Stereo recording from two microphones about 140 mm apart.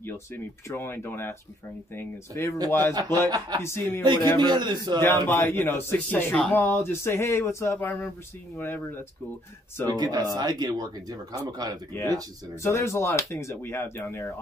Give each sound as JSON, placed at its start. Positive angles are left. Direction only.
{"t": 0.0, "sound": "a man's voice", "side_deg": 15}
{"t": 2.9, "sound": "speech", "side_deg": -25}
{"t": 3.6, "sound": "a man's voice", "side_deg": 15}
{"t": 4.0, "sound": "a man's voice", "side_deg": -30}
{"t": 5.0, "sound": "a man's voice", "side_deg": 15}
{"t": 9.8, "sound": "speech", "side_deg": -30}
{"t": 11.9, "sound": "a man's voice", "side_deg": 20}